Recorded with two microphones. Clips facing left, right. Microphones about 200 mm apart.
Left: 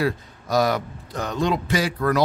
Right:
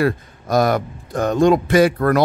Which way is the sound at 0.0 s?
50° right (ahead or behind).